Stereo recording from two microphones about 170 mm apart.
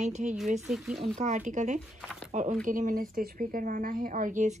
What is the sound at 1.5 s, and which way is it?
Speech, 45° right (ahead or behind).